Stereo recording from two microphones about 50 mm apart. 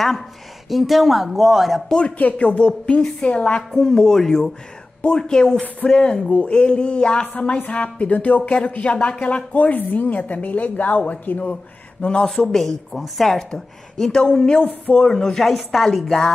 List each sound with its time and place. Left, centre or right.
0.7 s speech: centre
1.9 s speech: centre
2.1 s a woman's voice: left
7.3 s speech: left
12.3 s a woman's voice: centre
15.4 s speech: centre